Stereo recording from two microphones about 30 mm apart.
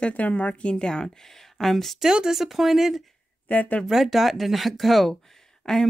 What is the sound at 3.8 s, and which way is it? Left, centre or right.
Speech, centre.